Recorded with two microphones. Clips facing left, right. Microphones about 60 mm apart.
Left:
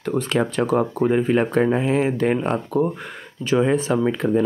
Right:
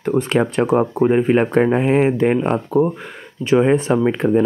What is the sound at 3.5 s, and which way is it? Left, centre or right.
Speech, right.